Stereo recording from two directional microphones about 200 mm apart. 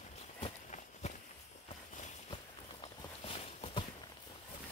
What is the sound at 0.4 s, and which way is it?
Walk, 35° left (ahead or behind).